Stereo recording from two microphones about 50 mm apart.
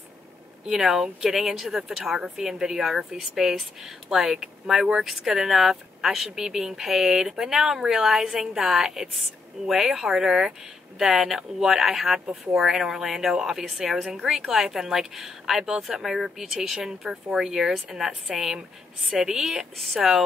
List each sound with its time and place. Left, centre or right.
0.7 s a woman's voice: centre